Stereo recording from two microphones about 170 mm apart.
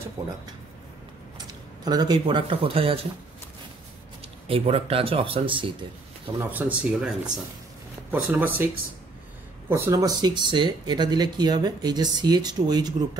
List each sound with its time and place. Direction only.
1.5 s speech: 25° right (ahead or behind)
4.5 s speech: 35° right (ahead or behind)
6.3 s speech: 10° right (ahead or behind)
9.7 s speech: 20° right (ahead or behind)